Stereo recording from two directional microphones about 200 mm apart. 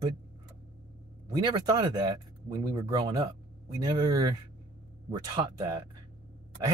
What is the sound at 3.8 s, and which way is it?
Speech, 20° right (ahead or behind).